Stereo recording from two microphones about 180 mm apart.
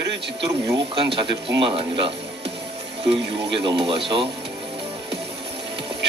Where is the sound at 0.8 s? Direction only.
30° right (ahead or behind).